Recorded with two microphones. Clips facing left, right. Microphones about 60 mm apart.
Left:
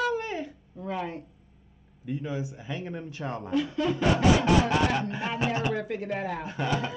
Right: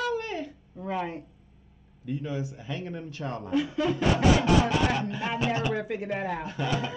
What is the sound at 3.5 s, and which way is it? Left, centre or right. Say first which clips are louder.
Speech: right 1 dB; centre.